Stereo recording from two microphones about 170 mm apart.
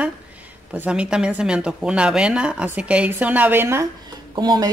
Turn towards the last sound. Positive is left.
turn(degrees=-25)  # may be behind; listen again after turning